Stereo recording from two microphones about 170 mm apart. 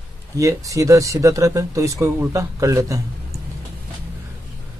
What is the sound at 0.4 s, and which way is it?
Speech, 20° right (ahead or behind).